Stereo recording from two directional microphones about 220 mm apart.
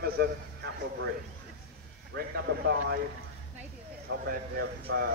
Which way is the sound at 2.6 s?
50° right (ahead or behind).